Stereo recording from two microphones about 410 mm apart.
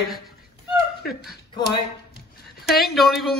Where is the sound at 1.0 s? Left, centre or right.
Centre.